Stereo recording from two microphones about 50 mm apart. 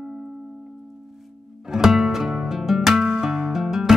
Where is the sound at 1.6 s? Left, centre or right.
Centre.